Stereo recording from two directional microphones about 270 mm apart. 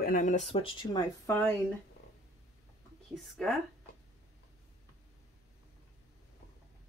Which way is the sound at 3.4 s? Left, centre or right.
Centre.